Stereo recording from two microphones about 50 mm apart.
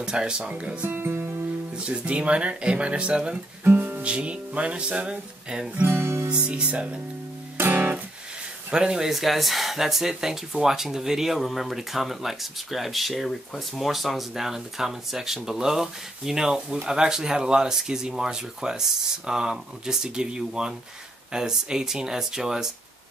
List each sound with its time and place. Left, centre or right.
0.0 s speech: centre
0.5 s music: right
0.8 s speech: right
1.9 s music: right
3.6 s music: right
4.0 s music: right
5.9 s music: right
6.2 s music: right
7.5 s guitar: right
8.7 s speech: centre